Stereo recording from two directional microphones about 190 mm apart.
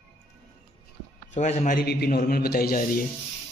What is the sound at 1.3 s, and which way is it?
Speech, 40° left (ahead or behind).